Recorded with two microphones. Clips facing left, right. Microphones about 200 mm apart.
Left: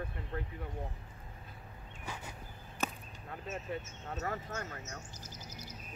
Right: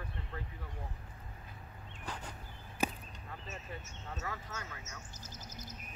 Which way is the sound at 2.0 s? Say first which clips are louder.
Even; 10° left (ahead or behind).